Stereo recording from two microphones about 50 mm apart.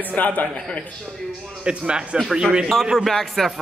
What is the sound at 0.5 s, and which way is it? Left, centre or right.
Speech, centre.